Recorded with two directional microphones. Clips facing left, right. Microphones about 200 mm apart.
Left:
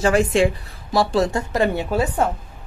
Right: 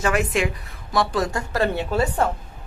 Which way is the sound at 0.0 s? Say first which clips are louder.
Left 5 dB; 30° left (ahead or behind).